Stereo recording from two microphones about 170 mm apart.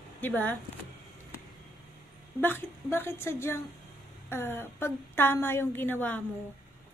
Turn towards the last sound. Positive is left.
turn(degrees=10)  # may be behind; listen again after turning